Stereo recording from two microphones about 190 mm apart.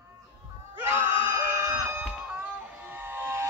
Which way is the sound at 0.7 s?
15° right (ahead or behind).